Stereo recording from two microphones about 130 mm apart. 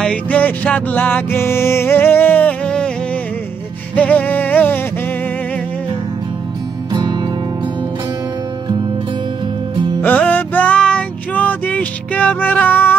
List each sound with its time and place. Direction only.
0.0 s music: 10° left (ahead or behind)
3.9 s music: 10° left (ahead or behind)
6.9 s music: 30° right (ahead or behind)
10.0 s a sound: 10° left (ahead or behind)